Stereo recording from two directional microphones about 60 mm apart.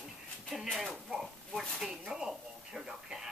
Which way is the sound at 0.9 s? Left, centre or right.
Centre.